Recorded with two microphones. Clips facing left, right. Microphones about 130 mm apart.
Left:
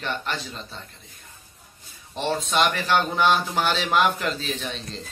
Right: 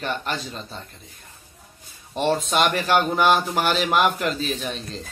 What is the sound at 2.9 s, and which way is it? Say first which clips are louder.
Speech: right 3 dB; 10° right (ahead or behind).